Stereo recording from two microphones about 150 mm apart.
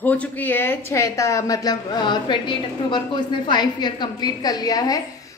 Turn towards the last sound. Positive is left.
turn(degrees=25)  # may be behind; listen again after turning